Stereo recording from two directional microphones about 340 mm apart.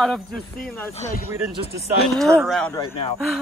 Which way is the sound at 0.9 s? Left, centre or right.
Centre.